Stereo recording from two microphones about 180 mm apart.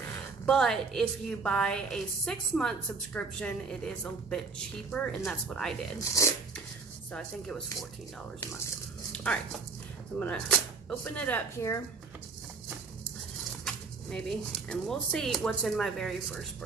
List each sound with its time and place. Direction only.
0.5 s a woman's voice: 5° left (ahead or behind)
6.2 s speech: 15° left (ahead or behind)
7.1 s a woman's voice: 5° left (ahead or behind)
9.1 s a sound: 5° left (ahead or behind)
10.1 s a woman's voice: 5° left (ahead or behind)
13.7 s speech: 5° left (ahead or behind)